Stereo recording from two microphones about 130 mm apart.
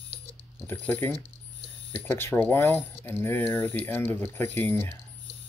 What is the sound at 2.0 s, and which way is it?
Speech, 15° left (ahead or behind).